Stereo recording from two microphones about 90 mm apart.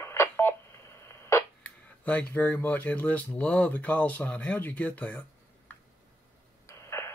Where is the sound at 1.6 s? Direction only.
15° left (ahead or behind).